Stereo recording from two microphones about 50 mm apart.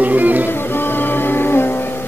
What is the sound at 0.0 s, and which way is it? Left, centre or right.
Music, right.